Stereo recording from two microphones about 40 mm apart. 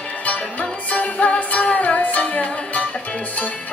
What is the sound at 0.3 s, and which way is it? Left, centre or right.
Music, left.